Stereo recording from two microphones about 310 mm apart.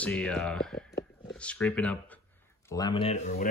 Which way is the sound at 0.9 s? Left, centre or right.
Left.